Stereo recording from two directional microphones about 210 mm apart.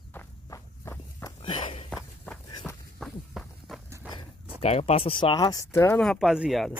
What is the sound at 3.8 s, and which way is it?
Horse, 15° right (ahead or behind).